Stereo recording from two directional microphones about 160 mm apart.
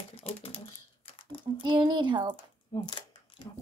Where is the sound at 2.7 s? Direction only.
30° left (ahead or behind).